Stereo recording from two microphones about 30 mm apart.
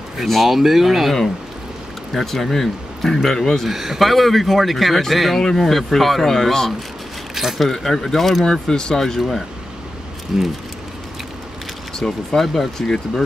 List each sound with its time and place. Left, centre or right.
0.3 s speech: centre
0.6 s speech: centre
2.3 s a man's voice: centre
3.6 s speech: centre
4.1 s a man's voice: centre
7.5 s a man's voice: centre
8.5 s speech: centre
10.3 s speech: centre
12.0 s a man's voice: centre
12.8 s speech: left